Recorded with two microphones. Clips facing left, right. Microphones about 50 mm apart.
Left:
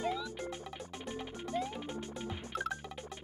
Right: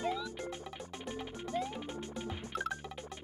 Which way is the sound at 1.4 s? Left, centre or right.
Centre.